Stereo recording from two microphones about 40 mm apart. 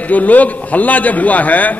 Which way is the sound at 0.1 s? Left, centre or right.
Left.